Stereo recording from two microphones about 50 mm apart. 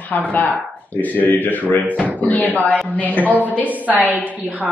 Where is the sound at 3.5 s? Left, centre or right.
Right.